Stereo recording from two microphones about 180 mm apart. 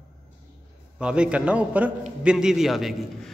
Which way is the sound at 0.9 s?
5° right (ahead or behind).